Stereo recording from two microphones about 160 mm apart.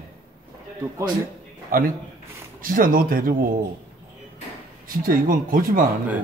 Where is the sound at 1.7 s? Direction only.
65° right (ahead or behind).